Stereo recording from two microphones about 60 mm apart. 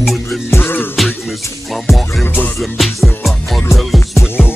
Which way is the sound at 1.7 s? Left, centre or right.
Centre.